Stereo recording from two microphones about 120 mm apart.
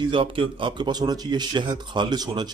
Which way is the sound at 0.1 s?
45° right (ahead or behind).